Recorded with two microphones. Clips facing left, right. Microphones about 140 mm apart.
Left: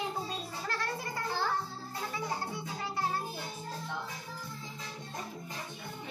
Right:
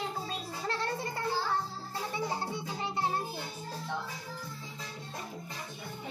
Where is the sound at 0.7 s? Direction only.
25° right (ahead or behind).